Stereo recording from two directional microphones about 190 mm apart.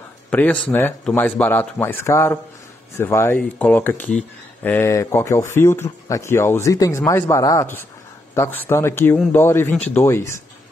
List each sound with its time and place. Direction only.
0.3 s speech: 5° left (ahead or behind)